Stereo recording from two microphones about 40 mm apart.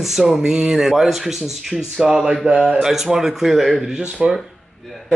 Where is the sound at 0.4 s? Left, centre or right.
Centre.